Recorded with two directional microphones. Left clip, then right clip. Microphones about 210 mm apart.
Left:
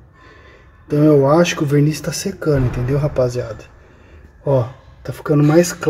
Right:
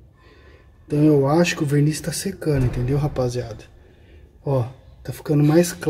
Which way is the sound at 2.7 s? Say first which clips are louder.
Left 6 dB; 15° right (ahead or behind).